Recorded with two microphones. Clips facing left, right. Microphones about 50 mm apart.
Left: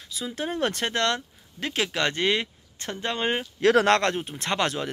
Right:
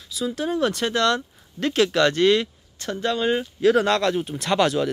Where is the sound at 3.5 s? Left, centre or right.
Left.